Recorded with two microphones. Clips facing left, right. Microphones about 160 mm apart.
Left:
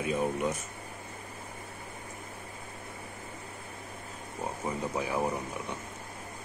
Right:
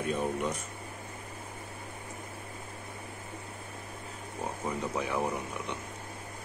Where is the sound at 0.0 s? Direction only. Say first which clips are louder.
Left 1 dB; 5° left (ahead or behind).